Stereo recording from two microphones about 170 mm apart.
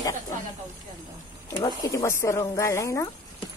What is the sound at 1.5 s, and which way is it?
Speech, 20° left (ahead or behind).